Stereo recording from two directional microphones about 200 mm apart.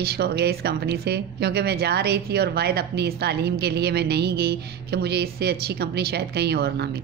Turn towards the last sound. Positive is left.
turn(degrees=-55)  # may be behind; listen again after turning